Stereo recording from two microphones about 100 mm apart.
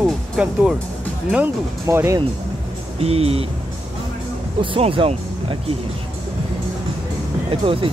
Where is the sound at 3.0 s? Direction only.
90° right.